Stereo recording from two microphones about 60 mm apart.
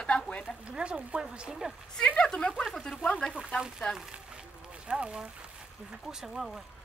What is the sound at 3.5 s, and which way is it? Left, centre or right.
Speech, centre.